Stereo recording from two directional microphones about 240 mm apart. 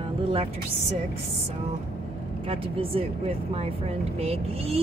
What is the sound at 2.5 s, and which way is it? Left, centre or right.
Speech, right.